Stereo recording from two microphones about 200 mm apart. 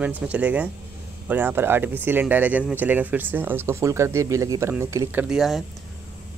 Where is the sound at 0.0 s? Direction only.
5° right (ahead or behind).